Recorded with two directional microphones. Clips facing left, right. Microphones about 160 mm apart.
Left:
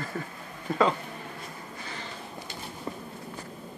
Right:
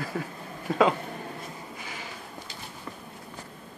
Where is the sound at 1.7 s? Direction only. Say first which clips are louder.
Even; 10° right (ahead or behind).